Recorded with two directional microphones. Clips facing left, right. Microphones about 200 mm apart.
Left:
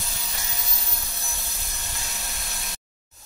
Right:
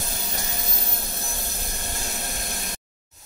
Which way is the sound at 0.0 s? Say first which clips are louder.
Right 5 dB; 45° right (ahead or behind).